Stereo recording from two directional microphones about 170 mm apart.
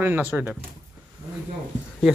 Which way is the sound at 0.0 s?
10° right (ahead or behind).